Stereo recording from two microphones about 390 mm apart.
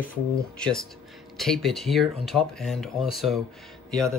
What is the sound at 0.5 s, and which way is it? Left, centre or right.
Speech, centre.